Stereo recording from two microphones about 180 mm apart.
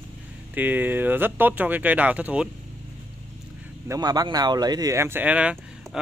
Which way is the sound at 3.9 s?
20° right (ahead or behind).